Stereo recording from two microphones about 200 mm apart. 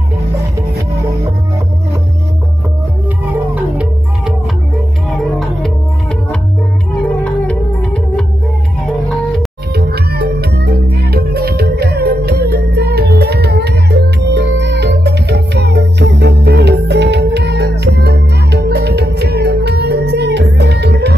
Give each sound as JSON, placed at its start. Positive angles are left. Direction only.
{"t": 7.2, "sound": "music", "side_deg": 5}
{"t": 9.8, "sound": "music", "side_deg": -50}